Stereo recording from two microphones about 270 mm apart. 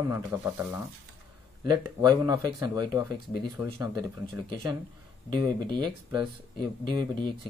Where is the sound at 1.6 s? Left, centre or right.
Centre.